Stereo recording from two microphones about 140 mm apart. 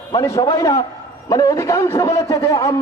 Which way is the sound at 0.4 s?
25° left (ahead or behind).